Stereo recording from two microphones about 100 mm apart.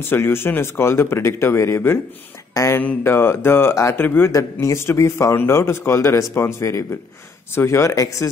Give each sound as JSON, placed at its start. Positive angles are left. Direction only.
{"t": 0.0, "sound": "a man's voice", "side_deg": 25}